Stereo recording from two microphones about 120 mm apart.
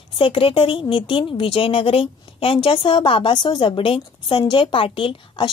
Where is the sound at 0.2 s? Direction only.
50° left (ahead or behind).